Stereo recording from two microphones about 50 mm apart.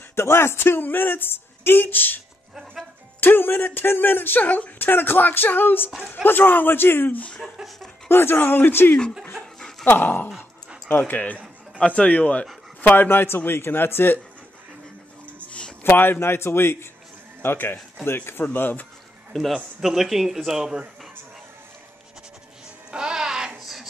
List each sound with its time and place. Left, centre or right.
0.1 s speech: left
4.4 s speech: left
4.7 s speech: left
5.9 s speech: centre
6.2 s speech: left
9.3 s dog: centre
10.0 s speech: left
12.9 s speech: left
15.2 s a sound: left
15.8 s speech: left
19.3 s a man's voice: centre
22.8 s music: centre
23.6 s a sound: centre